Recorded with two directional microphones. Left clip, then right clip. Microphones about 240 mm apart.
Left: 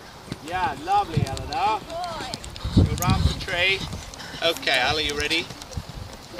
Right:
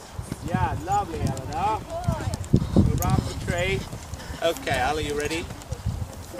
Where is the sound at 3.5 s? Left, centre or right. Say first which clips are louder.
Left 5 dB; centre.